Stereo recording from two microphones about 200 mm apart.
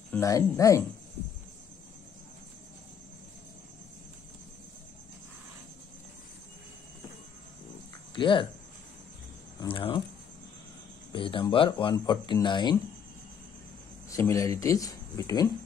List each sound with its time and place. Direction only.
0.1 s speech: 15° left (ahead or behind)
8.1 s speech: 25° left (ahead or behind)
9.6 s speech: 25° left (ahead or behind)
11.1 s speech: 25° left (ahead or behind)
14.1 s speech: 15° left (ahead or behind)